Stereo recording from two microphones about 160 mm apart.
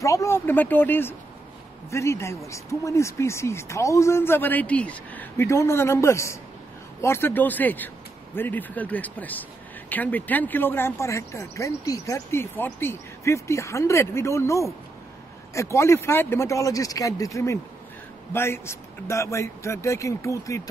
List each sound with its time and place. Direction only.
0.0 s speech: 20° left (ahead or behind)